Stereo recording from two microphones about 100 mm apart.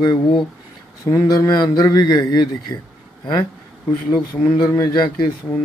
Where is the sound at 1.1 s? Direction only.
35° left (ahead or behind).